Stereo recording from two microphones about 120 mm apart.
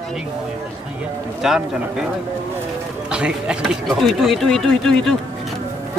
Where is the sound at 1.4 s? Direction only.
5° right (ahead or behind).